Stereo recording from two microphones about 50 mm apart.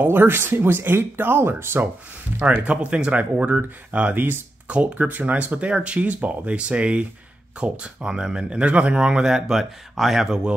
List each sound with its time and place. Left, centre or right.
0.0 s speech: right
2.3 s speech: right
9.0 s speech: centre